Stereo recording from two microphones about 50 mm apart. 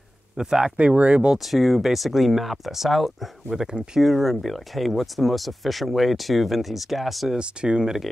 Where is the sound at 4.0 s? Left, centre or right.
Centre.